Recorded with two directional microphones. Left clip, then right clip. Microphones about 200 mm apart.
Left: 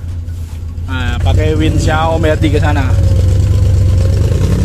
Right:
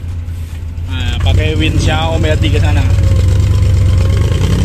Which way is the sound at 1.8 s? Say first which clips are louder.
Left 5 dB; 15° left (ahead or behind).